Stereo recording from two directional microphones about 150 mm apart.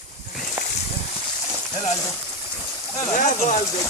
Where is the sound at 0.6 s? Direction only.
15° right (ahead or behind).